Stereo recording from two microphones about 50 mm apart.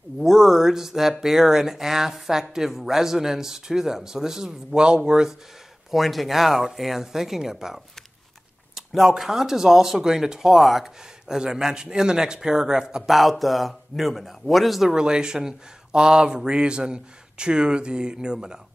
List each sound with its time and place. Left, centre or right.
0.2 s speech: centre
5.9 s speech: centre
15.0 s speech: centre